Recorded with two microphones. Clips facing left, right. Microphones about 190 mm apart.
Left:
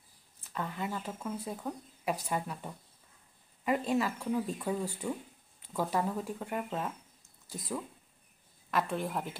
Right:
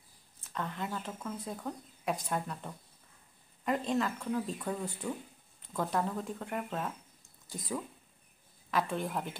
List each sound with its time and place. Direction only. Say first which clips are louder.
0.4 s speech: left 1 dB; 5° left (ahead or behind)